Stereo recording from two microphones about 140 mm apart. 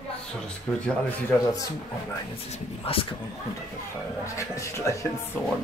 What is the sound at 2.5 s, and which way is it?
Speech, 40° left (ahead or behind).